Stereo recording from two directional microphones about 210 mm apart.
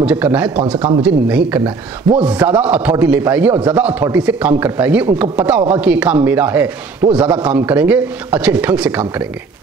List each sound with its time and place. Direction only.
0.0 s speech: 5° right (ahead or behind)
0.7 s speech: 25° right (ahead or behind)
1.0 s speech: 10° right (ahead or behind)
7.0 s speech: 20° right (ahead or behind)
7.4 s speech: 5° right (ahead or behind)